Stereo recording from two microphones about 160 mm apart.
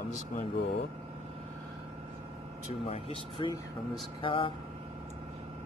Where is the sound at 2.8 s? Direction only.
35° left (ahead or behind).